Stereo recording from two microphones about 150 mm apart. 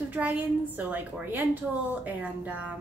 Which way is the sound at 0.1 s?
10° right (ahead or behind).